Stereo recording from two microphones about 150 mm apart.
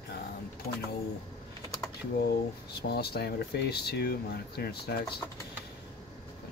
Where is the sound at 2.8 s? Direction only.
90° left.